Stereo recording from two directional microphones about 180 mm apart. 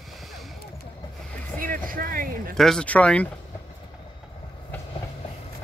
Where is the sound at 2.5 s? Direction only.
Centre (ahead or behind).